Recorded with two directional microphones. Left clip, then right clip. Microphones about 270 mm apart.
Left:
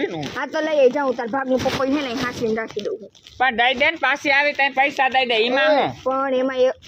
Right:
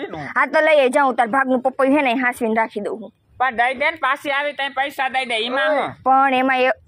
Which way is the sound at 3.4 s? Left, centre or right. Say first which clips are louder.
Left 1 dB; right.